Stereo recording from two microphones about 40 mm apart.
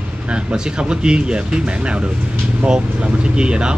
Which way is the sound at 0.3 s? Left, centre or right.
Right.